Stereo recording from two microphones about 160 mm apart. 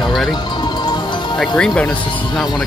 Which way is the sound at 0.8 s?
30° left (ahead or behind).